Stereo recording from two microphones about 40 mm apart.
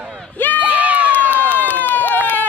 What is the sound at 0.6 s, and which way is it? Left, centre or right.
Run, right.